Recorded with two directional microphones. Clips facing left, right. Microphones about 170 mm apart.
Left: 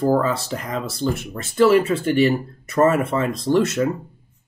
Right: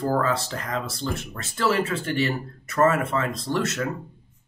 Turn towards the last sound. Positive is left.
turn(degrees=15)  # may be behind; listen again after turning